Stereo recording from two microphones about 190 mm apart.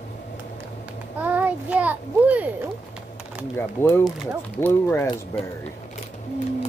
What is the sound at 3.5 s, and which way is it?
Speech, 15° left (ahead or behind).